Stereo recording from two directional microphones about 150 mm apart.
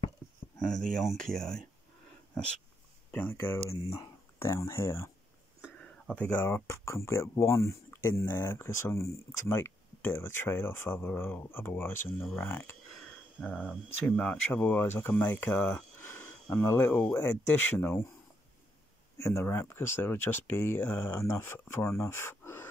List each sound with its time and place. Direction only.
0.6 s speech: 5° left (ahead or behind)
3.1 s speech: 15° left (ahead or behind)
3.7 s speech: 35° left (ahead or behind)
4.4 s speech: 20° left (ahead or behind)
19.1 s speech: 20° left (ahead or behind)